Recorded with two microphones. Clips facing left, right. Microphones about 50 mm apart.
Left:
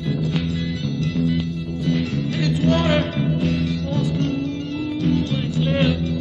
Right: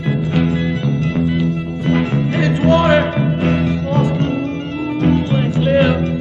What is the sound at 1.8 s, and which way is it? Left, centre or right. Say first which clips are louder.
Music: right 6 dB; right.